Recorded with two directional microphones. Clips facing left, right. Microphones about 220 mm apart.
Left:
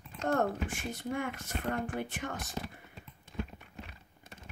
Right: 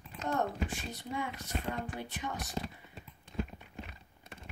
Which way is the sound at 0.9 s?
50° left (ahead or behind).